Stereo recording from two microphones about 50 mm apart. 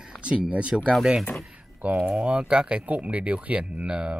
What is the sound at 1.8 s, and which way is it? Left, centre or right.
Speech, right.